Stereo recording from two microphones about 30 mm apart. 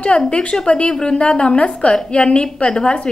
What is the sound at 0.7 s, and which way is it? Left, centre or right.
A woman's voice, left.